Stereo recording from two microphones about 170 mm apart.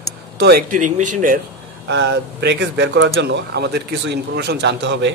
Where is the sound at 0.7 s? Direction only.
50° right (ahead or behind).